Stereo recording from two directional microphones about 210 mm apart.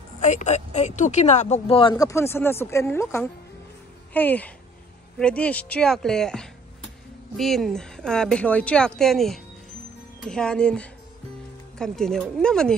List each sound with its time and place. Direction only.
0.2 s speech: 35° left (ahead or behind); by 12.7 s 5° left (ahead or behind)